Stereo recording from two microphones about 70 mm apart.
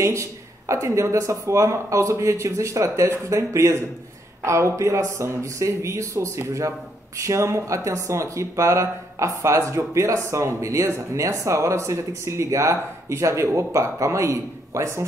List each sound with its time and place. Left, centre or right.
0.0 s speech: right